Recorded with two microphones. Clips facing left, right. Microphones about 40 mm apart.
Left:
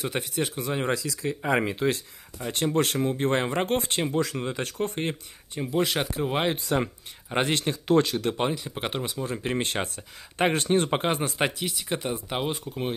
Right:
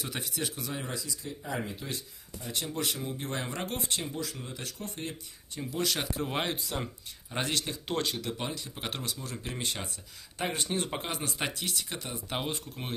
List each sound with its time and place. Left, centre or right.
0.0 s speech: left
0.7 s speech: left
2.4 s speech: left
4.1 s speech: left
6.2 s speech: centre
6.5 s speech: left
7.2 s speech: left
8.2 s speech: left
8.5 s speech: left
9.4 s speech: left
12.3 s speech: centre